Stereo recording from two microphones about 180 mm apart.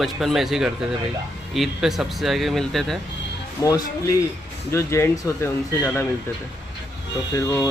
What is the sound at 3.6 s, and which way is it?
A man's voice, 20° left (ahead or behind).